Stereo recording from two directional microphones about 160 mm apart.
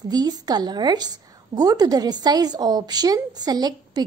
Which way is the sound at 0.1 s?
25° right (ahead or behind).